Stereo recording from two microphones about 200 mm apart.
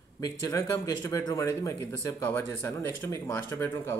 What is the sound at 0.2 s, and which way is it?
Speech, 15° left (ahead or behind).